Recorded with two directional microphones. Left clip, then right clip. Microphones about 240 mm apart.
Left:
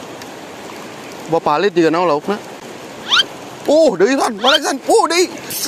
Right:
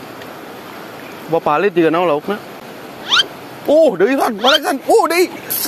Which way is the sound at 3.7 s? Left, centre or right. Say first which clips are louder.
Even; centre.